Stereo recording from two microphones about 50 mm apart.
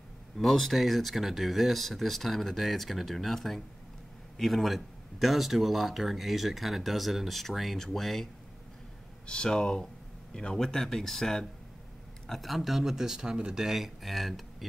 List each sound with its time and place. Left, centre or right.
0.4 s speech: centre
9.2 s speech: centre